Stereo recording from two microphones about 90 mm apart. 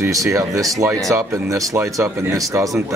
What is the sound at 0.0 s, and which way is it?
Speech, 35° right (ahead or behind).